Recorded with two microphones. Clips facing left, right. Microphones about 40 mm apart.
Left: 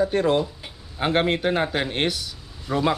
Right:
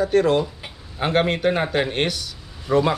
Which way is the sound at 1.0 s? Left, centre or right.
Centre.